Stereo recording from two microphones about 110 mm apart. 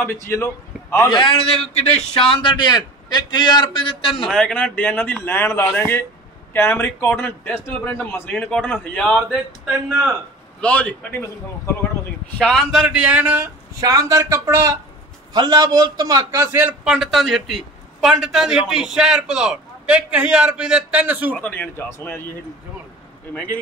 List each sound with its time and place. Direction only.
0.0 s a man's voice: 20° left (ahead or behind)
1.1 s a man's voice: 50° left (ahead or behind)
4.3 s a man's voice: 5° left (ahead or behind)
10.6 s a man's voice: 10° left (ahead or behind)
12.4 s a man's voice: 5° left (ahead or behind)
12.8 s a man's voice: 10° right (ahead or behind)
13.7 s speech: 30° right (ahead or behind)
15.3 s a man's voice: 35° right (ahead or behind)
16.5 s a man's voice: 15° right (ahead or behind)
16.9 s a man's voice: centre (ahead or behind)
21.4 s speech: 20° left (ahead or behind)
23.3 s a man's voice: 15° left (ahead or behind)